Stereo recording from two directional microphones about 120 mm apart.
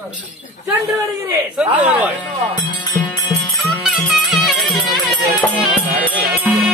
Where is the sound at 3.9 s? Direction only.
Centre (ahead or behind).